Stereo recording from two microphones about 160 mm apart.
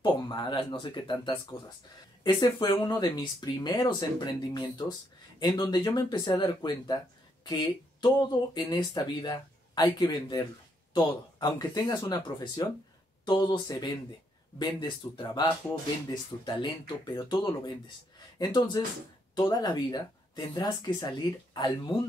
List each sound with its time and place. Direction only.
0.0 s speech: 30° left (ahead or behind)
2.2 s speech: 20° left (ahead or behind)
18.4 s speech: 25° left (ahead or behind)